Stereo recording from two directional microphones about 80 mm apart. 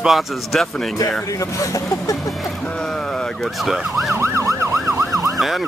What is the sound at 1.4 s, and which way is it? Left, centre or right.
Speech, left.